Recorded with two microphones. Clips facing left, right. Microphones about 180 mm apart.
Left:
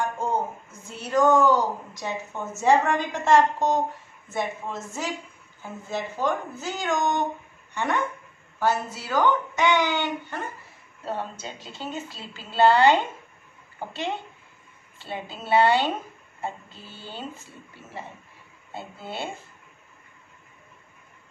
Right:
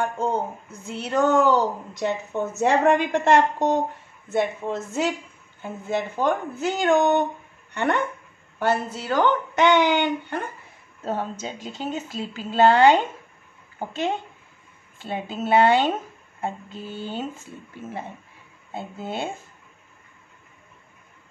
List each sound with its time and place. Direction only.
0.9 s a woman's voice: 65° right (ahead or behind)
11.1 s speech: 45° right (ahead or behind)
18.7 s speech: 50° right (ahead or behind)